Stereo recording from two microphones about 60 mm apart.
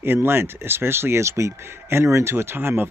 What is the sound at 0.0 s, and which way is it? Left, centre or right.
Speech, right.